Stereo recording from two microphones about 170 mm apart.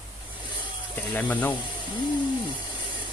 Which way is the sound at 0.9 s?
10° left (ahead or behind).